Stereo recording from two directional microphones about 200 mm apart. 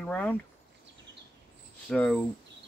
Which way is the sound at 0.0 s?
5° left (ahead or behind).